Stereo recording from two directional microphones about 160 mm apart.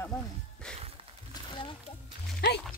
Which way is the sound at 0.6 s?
5° left (ahead or behind).